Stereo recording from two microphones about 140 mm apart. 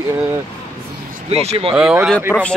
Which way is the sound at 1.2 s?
45° right (ahead or behind).